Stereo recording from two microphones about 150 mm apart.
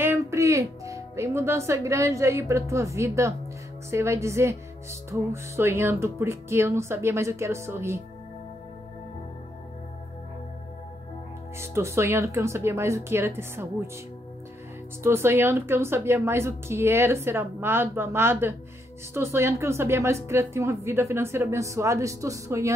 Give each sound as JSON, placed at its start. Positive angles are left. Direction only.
{"t": 0.0, "sound": "a woman's voice", "side_deg": -15}
{"t": 11.5, "sound": "a woman's voice", "side_deg": -15}
{"t": 15.0, "sound": "a woman's voice", "side_deg": -15}